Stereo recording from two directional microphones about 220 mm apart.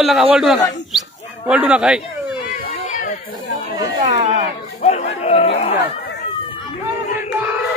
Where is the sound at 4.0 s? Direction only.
30° right (ahead or behind).